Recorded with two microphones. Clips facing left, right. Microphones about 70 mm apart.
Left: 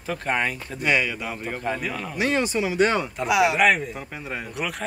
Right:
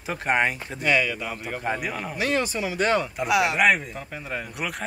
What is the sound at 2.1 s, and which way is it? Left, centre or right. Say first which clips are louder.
Speech: left 3 dB; left.